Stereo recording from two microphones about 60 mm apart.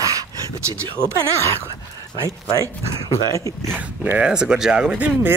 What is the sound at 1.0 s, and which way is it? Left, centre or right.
Speech, centre.